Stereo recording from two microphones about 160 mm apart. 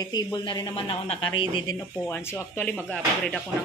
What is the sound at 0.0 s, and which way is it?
Speech, 25° left (ahead or behind).